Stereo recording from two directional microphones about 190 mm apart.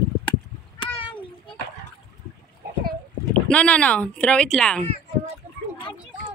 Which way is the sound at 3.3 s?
5° left (ahead or behind).